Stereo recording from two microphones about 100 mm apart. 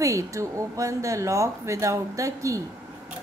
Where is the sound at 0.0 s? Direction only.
30° right (ahead or behind).